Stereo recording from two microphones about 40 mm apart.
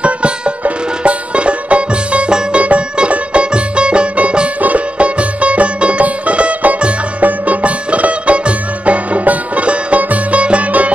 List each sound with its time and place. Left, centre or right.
0.0 s music: right
4.6 s music: right